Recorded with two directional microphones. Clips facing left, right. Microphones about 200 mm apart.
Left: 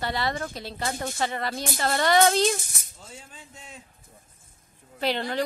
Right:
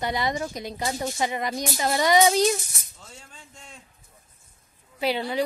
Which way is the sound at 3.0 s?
10° left (ahead or behind).